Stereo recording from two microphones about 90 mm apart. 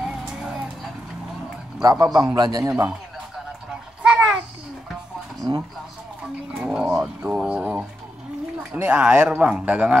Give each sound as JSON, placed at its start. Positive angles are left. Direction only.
{"t": 0.0, "sound": "vehicle", "side_deg": -5}
{"t": 1.8, "sound": "a man's voice", "side_deg": -45}
{"t": 4.0, "sound": "a sound", "side_deg": -10}
{"t": 6.6, "sound": "bird", "side_deg": -10}
{"t": 7.2, "sound": "speech", "side_deg": -10}